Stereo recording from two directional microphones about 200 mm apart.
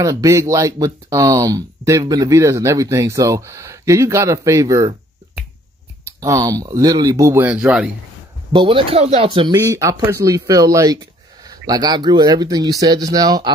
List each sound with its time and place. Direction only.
0.0 s speech: 15° right (ahead or behind)
6.2 s speech: 15° right (ahead or behind)
8.5 s speech: 25° right (ahead or behind)